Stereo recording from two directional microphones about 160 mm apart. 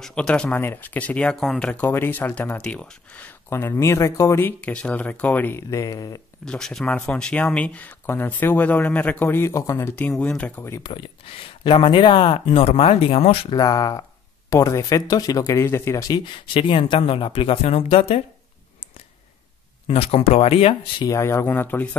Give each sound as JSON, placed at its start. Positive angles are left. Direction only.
{"t": 0.0, "sound": "speech", "side_deg": 5}
{"t": 6.4, "sound": "speech", "side_deg": 5}
{"t": 10.9, "sound": "speech", "side_deg": 35}
{"t": 19.9, "sound": "speech", "side_deg": 35}
{"t": 21.0, "sound": "speech", "side_deg": 20}